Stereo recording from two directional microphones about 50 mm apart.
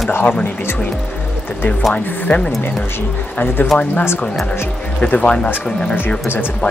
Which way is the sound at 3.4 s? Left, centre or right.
Left.